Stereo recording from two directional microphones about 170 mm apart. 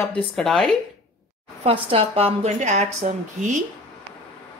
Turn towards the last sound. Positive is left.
turn(degrees=-40)  # may be behind; listen again after turning